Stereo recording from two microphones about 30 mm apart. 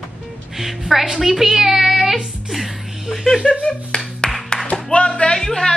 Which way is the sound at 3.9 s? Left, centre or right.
Left.